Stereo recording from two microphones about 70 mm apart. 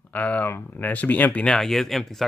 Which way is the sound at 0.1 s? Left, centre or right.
Left.